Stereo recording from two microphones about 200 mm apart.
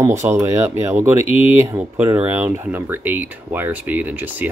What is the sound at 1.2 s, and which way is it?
Speech, 30° left (ahead or behind).